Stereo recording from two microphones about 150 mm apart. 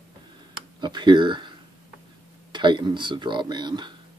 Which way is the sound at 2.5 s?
30° right (ahead or behind).